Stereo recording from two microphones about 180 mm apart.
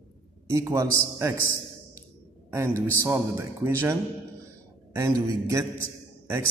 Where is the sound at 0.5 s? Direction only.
15° right (ahead or behind).